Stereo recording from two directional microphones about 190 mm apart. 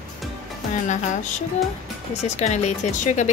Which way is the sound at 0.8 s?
40° left (ahead or behind).